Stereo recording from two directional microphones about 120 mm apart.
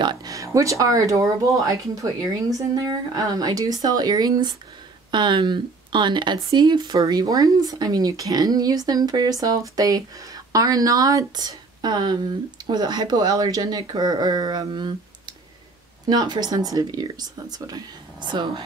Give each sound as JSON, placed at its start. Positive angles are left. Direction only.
{"t": 0.0, "sound": "speech", "side_deg": -35}
{"t": 16.1, "sound": "speech", "side_deg": -35}